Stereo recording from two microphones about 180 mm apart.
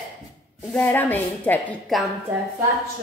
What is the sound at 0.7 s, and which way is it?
A woman's voice, 10° left (ahead or behind).